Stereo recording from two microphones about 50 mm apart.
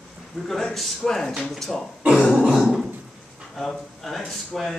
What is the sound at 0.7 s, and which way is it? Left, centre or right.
Speech, centre.